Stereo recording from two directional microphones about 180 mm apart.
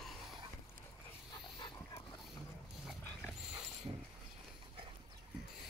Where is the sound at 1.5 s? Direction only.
25° left (ahead or behind).